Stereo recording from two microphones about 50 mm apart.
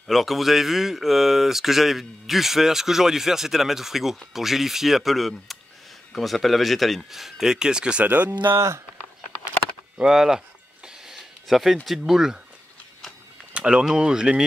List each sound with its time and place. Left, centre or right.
0.0 s speech: centre
8.0 s speech: right
8.5 s speech: right
10.0 s speech: centre
10.9 s a sound: centre
11.4 s speech: centre
13.5 s speech: right